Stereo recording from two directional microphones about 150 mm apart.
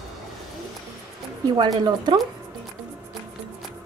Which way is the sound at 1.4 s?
25° right (ahead or behind).